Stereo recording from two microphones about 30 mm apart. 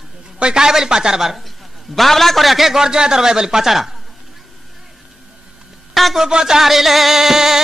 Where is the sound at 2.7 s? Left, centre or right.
Right.